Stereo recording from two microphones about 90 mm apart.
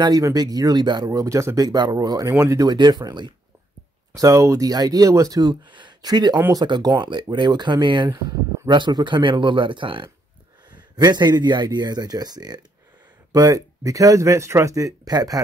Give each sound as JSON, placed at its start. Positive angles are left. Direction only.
{"t": 0.2, "sound": "speech", "side_deg": -45}
{"t": 2.7, "sound": "speech", "side_deg": -50}
{"t": 4.1, "sound": "speech", "side_deg": -35}
{"t": 11.0, "sound": "speech", "side_deg": -50}